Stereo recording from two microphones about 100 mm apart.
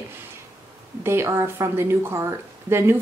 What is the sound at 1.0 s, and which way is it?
Speech, 30° right (ahead or behind).